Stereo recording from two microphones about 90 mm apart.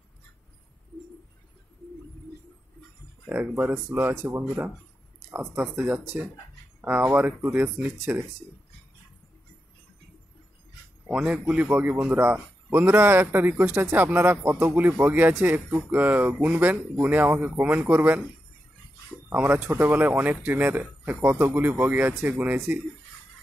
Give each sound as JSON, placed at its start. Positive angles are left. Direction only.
{"t": 3.3, "sound": "speech", "side_deg": -20}
{"t": 11.1, "sound": "speech", "side_deg": -10}